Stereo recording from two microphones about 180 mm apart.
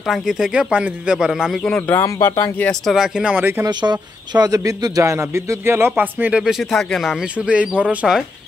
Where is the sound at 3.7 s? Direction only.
25° right (ahead or behind); by 8.2 s 5° right (ahead or behind).